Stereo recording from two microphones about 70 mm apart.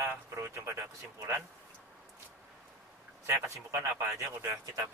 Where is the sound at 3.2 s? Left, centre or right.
Right.